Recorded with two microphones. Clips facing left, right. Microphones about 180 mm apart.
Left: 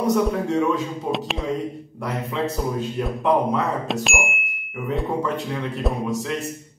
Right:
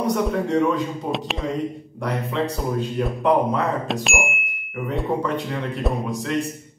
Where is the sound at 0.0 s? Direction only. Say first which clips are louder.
Left 1 dB; centre (ahead or behind).